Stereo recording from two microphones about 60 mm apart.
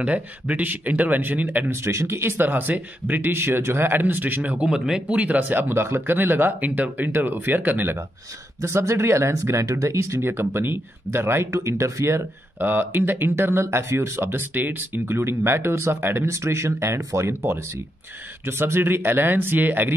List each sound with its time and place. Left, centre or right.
0.0 s speech: right
1.7 s speech: right
4.6 s speech: centre
5.1 s speech: right
8.5 s speech: right
11.5 s speech: right
12.5 s speech: right
16.3 s speech: right